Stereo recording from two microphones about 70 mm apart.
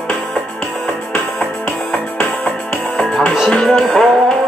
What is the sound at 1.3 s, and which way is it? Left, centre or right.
Music, left.